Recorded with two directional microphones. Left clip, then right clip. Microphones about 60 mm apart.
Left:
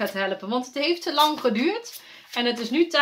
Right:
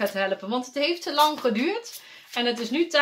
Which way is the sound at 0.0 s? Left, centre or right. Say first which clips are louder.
Right 1 dB; centre.